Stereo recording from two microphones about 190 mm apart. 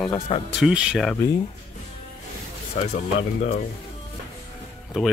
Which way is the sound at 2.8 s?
40° left (ahead or behind).